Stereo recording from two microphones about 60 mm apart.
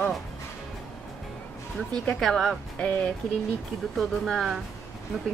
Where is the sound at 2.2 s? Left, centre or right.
Centre.